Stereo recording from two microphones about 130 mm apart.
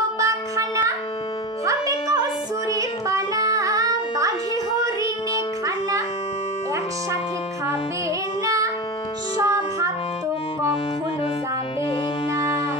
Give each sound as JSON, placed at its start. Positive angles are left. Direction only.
{"t": 0.2, "sound": "a sound", "side_deg": -25}
{"t": 1.7, "sound": "music", "side_deg": -25}
{"t": 9.4, "sound": "music", "side_deg": -25}